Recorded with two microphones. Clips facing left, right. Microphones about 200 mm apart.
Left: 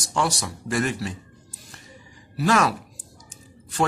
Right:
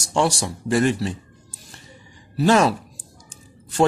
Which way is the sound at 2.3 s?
30° right (ahead or behind).